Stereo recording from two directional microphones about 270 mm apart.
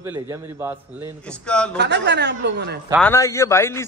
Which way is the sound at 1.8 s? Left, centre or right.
Right.